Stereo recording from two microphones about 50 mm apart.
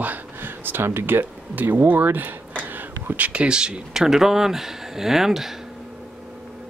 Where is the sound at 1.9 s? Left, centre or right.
Right.